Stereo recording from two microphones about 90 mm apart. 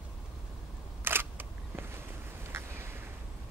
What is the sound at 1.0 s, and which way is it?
Single-lens reflex camera, 25° right (ahead or behind).